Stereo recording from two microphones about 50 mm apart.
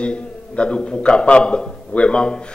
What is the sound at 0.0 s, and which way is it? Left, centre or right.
A man's voice, left.